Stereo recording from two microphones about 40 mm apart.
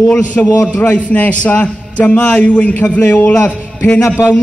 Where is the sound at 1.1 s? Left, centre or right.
Left.